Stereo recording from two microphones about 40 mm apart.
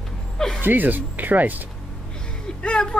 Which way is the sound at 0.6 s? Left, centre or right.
Right.